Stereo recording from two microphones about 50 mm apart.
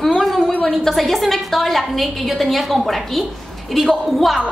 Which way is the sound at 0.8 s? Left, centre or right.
Centre.